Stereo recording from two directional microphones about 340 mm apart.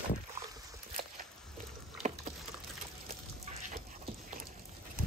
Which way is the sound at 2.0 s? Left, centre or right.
Right.